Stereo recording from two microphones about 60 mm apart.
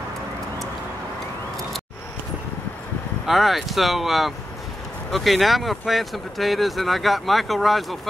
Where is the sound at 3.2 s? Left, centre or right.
Centre.